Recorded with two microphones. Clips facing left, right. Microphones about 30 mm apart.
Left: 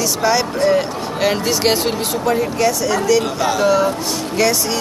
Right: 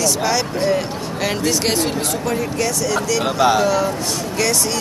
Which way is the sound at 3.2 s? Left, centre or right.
Right.